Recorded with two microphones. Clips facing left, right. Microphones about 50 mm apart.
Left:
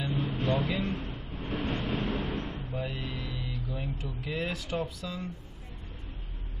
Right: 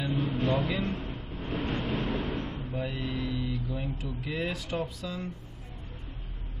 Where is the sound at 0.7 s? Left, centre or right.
Right.